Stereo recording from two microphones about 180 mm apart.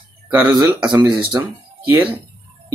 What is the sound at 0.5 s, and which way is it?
Speech, 25° right (ahead or behind).